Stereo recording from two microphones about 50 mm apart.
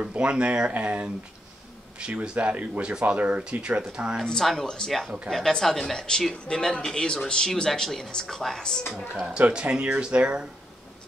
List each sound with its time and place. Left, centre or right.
0.0 s speech: right
2.8 s speech: right
4.2 s a woman's voice: centre
8.9 s speech: centre